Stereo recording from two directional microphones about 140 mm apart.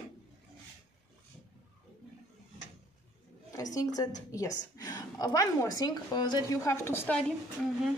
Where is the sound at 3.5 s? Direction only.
25° left (ahead or behind).